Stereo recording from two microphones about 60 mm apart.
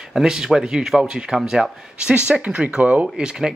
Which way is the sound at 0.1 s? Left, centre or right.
Centre.